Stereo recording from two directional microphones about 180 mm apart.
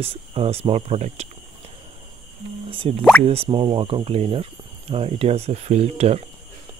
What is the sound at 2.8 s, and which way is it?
Speech, 30° right (ahead or behind).